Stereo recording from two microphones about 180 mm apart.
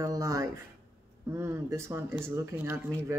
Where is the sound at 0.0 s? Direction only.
20° right (ahead or behind).